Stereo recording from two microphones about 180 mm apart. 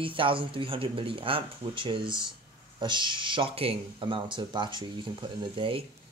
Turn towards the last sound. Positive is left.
turn(degrees=-30)  # may be behind; listen again after turning